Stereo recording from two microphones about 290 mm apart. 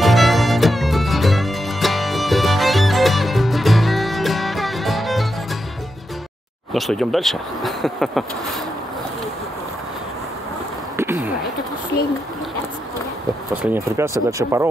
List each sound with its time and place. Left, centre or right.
0.0 s music: centre
6.7 s speech: centre
13.6 s speech: centre